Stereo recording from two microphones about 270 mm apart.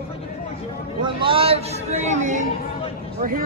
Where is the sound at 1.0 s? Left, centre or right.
Centre.